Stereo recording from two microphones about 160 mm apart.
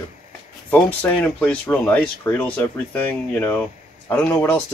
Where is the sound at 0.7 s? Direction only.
10° left (ahead or behind).